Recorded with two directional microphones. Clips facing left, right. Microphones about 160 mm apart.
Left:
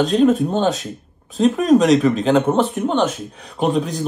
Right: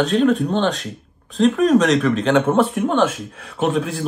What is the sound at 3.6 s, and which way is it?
Speech, centre (ahead or behind).